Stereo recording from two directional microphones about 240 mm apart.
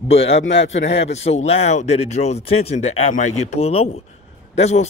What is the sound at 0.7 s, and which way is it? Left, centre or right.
Speech, left.